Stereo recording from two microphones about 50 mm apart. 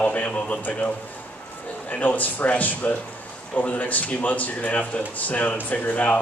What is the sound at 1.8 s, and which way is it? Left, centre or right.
Speech, left.